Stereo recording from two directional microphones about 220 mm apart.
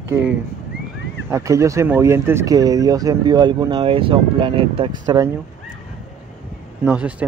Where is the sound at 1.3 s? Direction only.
15° right (ahead or behind).